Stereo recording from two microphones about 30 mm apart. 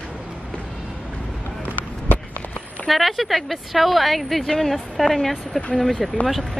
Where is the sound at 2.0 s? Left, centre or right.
Left.